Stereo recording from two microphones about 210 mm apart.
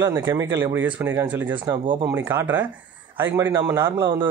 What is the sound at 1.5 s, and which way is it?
A man's voice, 20° right (ahead or behind).